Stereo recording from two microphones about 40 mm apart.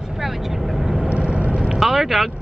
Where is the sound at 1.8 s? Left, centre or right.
Centre.